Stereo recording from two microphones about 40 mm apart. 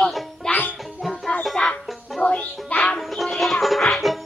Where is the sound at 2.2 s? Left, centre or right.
Left.